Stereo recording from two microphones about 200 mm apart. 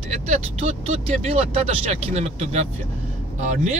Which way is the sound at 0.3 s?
35° right (ahead or behind).